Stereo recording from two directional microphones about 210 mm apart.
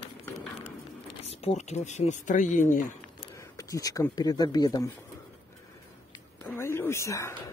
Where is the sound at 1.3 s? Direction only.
30° left (ahead or behind).